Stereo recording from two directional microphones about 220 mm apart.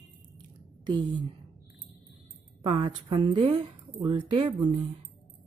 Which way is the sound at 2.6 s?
25° right (ahead or behind).